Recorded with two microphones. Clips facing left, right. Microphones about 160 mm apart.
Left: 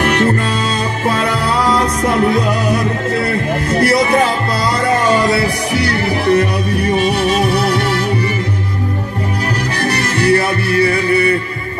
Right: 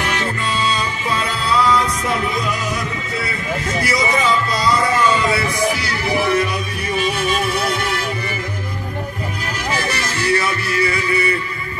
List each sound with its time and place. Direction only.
0.0 s music: 50° left (ahead or behind)
2.2 s music: 55° left (ahead or behind)
9.8 s music: 60° left (ahead or behind)